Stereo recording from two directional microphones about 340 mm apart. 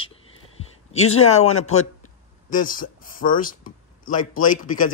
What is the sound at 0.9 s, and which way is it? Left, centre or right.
Speech, left.